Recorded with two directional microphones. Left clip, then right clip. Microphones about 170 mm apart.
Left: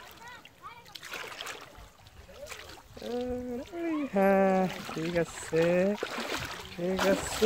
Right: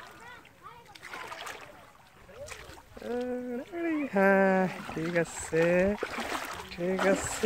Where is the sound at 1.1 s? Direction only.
30° left (ahead or behind).